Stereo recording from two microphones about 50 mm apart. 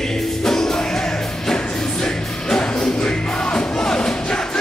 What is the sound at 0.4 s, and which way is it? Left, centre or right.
Music, centre.